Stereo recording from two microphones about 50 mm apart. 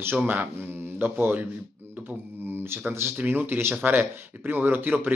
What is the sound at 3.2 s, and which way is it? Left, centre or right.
A man's voice, right.